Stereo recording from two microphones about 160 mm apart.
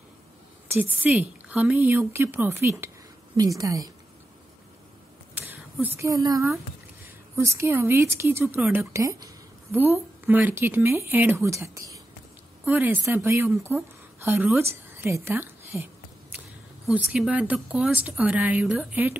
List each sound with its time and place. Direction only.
0.7 s a woman's voice: 10° right (ahead or behind)
5.3 s a sound: 10° right (ahead or behind)
7.3 s a woman's voice: 15° right (ahead or behind)
8.9 s a woman's voice: 20° right (ahead or behind)
14.6 s a sound: 15° right (ahead or behind)
16.9 s a woman's voice: 10° right (ahead or behind)